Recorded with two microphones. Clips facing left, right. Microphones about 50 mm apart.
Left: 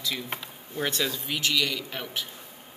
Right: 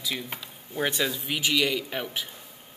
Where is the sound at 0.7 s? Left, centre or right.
Centre.